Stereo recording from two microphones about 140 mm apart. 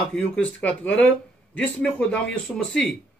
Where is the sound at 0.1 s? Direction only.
10° left (ahead or behind).